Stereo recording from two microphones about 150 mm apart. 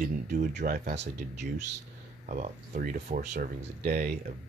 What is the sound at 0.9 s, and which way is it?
Speech, 45° right (ahead or behind).